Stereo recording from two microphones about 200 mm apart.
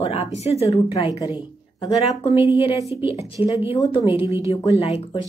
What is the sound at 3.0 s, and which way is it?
A woman's voice, 25° left (ahead or behind).